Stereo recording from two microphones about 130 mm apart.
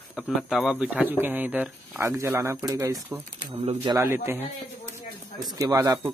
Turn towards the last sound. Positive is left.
turn(degrees=-30)  # may be behind; listen again after turning